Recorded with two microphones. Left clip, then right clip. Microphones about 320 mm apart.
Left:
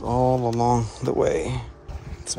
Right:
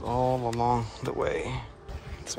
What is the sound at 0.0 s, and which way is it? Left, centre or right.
Speech, centre.